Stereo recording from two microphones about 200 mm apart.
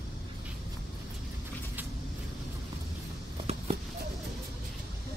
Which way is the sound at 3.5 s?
30° right (ahead or behind).